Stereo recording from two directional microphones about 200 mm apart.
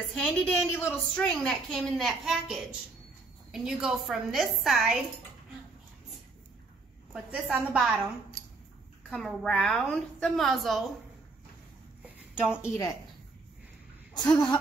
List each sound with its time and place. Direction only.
0.1 s a woman's voice: centre (ahead or behind)
7.1 s a woman's voice: 5° right (ahead or behind)
9.1 s a woman's voice: centre (ahead or behind)
12.4 s a woman's voice: 15° left (ahead or behind)
14.1 s speech: 20° left (ahead or behind)